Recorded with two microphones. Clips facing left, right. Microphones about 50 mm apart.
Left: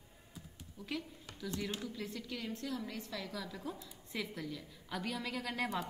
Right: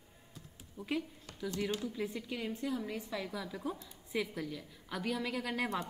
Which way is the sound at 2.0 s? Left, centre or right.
Centre.